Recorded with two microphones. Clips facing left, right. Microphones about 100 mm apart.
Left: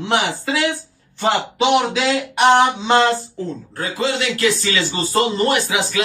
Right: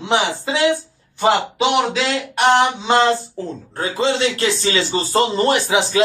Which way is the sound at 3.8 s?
25° right (ahead or behind).